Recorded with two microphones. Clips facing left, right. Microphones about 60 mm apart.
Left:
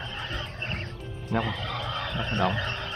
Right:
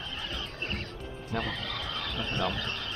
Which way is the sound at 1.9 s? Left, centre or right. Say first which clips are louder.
Left 4 dB; left.